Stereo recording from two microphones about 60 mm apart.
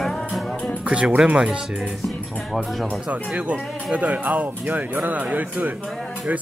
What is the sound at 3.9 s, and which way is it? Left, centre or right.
Speech, right.